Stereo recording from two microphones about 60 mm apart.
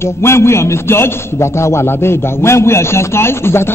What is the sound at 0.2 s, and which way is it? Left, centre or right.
A man's voice, left.